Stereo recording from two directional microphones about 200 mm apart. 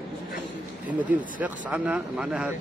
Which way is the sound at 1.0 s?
10° right (ahead or behind).